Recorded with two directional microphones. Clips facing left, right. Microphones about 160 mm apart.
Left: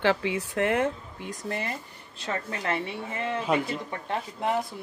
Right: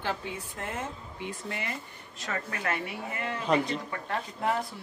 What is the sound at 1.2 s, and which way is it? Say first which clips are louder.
Speech: left 4 dB; 40° left (ahead or behind).